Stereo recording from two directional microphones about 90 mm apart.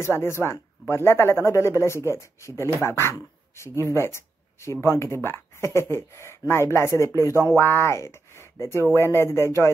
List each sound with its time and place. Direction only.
0.0 s speech: 30° left (ahead or behind)